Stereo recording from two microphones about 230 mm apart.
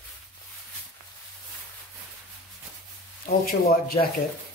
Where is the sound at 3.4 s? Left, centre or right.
Left.